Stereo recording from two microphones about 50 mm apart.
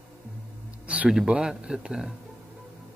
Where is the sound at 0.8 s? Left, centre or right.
Right.